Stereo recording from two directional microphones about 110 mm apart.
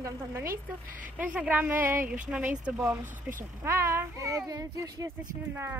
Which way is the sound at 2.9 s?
25° right (ahead or behind).